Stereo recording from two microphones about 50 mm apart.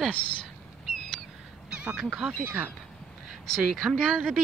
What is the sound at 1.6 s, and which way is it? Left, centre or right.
Goose, right.